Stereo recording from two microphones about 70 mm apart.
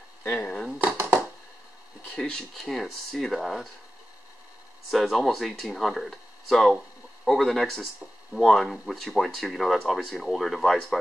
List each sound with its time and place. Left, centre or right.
0.2 s speech: left
0.7 s a sound: right
2.5 s speech: centre
4.9 s speech: centre